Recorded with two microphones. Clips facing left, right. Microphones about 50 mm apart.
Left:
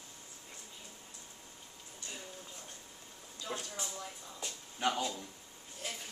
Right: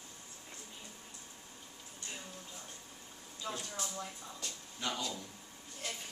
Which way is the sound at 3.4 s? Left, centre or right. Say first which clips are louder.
Even; centre.